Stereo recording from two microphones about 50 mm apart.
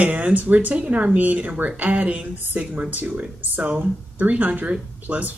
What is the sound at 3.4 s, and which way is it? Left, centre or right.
Speech, right.